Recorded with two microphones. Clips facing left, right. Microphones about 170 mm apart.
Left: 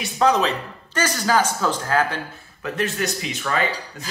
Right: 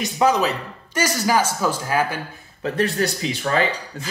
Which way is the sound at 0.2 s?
5° right (ahead or behind).